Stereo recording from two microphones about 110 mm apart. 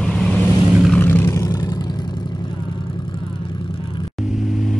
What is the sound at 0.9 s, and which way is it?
Vehicle, 20° left (ahead or behind).